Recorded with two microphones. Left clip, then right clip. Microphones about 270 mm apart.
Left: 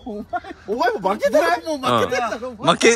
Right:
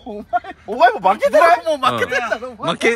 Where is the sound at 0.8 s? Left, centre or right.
Right.